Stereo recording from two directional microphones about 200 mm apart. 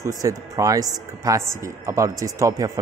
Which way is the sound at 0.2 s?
15° right (ahead or behind).